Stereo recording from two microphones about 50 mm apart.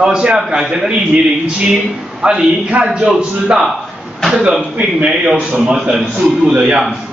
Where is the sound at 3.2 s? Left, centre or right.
Centre.